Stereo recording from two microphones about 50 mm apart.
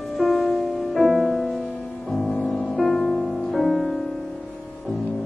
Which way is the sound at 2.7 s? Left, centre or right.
Centre.